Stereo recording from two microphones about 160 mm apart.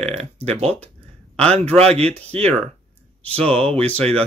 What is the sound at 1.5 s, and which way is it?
Speech, 40° right (ahead or behind).